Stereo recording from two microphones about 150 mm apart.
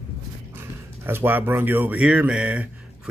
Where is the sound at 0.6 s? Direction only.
15° right (ahead or behind).